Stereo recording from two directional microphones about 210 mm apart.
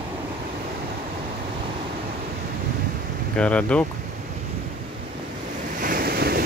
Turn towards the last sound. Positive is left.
turn(degrees=-45)  # may be behind; listen again after turning